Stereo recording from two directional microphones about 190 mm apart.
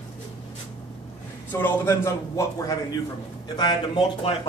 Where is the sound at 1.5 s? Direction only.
10° left (ahead or behind).